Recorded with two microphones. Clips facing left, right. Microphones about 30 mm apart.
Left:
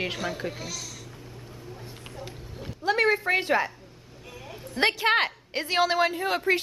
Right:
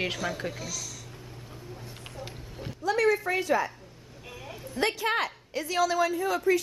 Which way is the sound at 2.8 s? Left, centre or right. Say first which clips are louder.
Left 2 dB; left.